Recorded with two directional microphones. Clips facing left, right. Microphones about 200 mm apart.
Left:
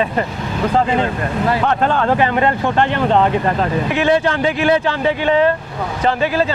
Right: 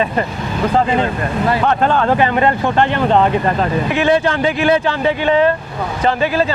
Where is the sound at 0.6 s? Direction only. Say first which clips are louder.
Right 1 dB; 20° right (ahead or behind).